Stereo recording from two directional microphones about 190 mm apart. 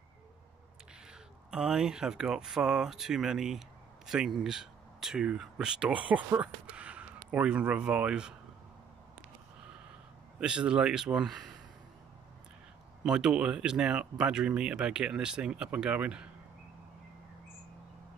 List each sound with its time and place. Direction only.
1.5 s speech: 5° right (ahead or behind)
10.4 s speech: 5° right (ahead or behind)
13.0 s speech: 5° right (ahead or behind)